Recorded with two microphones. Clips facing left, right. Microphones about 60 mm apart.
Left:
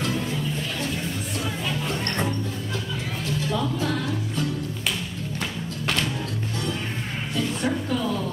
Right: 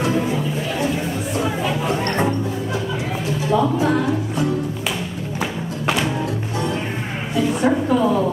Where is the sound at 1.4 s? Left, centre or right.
Centre.